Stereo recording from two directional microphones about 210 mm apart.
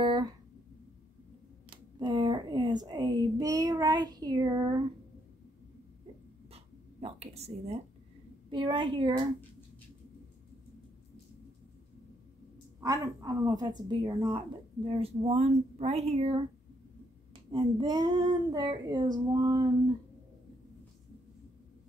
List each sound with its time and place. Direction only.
0.0 s a sound: 20° right (ahead or behind)
1.7 s speech: 20° right (ahead or behind)
6.5 s a sound: 30° right (ahead or behind)
8.5 s child singing: 25° right (ahead or behind)
12.8 s child singing: 15° right (ahead or behind)
17.5 s child singing: 25° right (ahead or behind)